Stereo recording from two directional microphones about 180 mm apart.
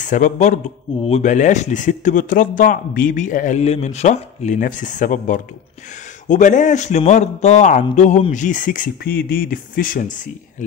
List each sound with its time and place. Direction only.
0.0 s a man's voice: 45° left (ahead or behind)